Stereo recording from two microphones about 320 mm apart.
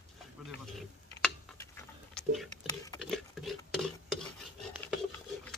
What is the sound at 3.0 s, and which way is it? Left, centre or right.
Pig, centre.